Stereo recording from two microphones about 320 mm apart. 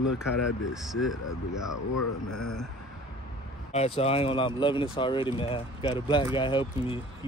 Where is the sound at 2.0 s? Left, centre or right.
Left.